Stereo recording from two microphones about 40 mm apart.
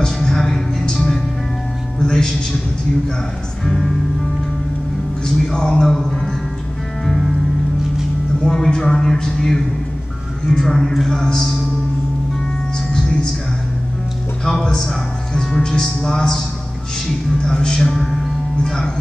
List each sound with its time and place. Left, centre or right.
0.0 s music: centre
3.6 s speech: centre
5.2 s speech: centre
8.4 s speech: centre
11.2 s speech: centre
12.9 s music: centre
14.4 s speech: centre